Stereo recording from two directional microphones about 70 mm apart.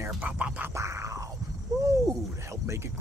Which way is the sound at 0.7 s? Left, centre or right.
Right.